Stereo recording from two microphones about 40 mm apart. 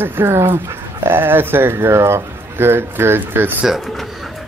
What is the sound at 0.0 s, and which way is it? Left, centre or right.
Speech, right.